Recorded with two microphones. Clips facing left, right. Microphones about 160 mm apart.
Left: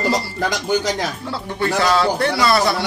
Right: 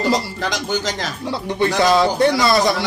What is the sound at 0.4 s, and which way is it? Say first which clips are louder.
Speech: left 2 dB; 10° left (ahead or behind).